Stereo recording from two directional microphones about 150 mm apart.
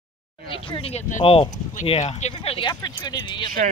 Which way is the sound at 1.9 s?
50° left (ahead or behind).